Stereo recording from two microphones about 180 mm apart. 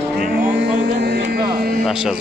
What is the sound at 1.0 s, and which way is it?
Speech, 60° right (ahead or behind).